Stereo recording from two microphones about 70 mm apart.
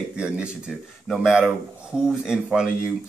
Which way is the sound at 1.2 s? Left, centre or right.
Centre.